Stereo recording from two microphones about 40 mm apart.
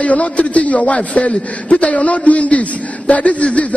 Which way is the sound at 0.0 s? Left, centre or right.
Left.